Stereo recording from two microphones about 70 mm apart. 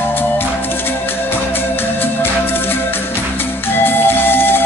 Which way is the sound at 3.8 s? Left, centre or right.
Left.